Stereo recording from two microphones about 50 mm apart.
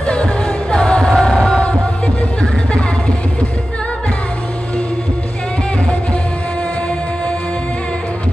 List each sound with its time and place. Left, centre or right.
0.0 s music: left